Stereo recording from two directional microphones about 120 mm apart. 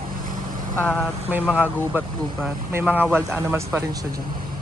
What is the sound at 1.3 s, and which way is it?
Speech, 10° right (ahead or behind).